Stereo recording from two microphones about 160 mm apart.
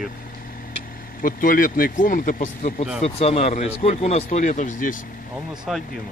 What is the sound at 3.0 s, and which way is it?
Speech, 40° left (ahead or behind).